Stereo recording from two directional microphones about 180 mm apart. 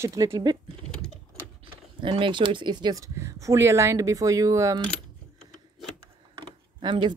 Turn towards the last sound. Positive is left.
turn(degrees=-25)  # may be behind; listen again after turning